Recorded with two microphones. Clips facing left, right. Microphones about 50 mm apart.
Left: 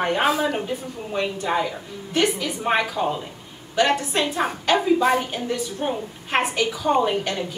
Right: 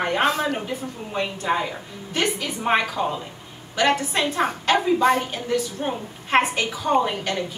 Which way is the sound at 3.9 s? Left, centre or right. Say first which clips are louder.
Even; centre.